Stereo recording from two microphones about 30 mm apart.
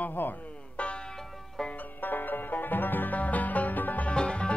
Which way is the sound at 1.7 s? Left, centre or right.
Left.